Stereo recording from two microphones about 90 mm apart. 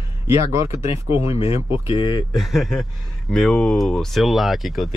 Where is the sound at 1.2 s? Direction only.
90° left.